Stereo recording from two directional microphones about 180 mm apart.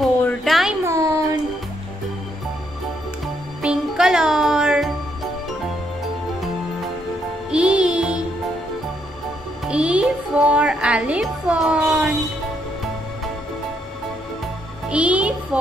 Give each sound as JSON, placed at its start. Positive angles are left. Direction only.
{"t": 0.2, "sound": "a sound", "side_deg": 5}
{"t": 0.8, "sound": "a sound", "side_deg": -15}
{"t": 3.6, "sound": "music", "side_deg": -5}
{"t": 7.5, "sound": "music", "side_deg": -5}
{"t": 9.7, "sound": "music", "side_deg": -5}
{"t": 14.9, "sound": "music", "side_deg": -5}